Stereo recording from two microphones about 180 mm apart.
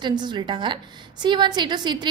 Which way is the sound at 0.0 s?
25° right (ahead or behind).